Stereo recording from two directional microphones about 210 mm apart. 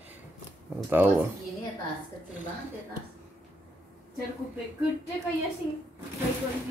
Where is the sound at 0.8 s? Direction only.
10° right (ahead or behind).